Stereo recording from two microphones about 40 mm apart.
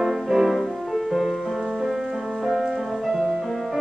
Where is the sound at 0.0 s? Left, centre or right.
Centre.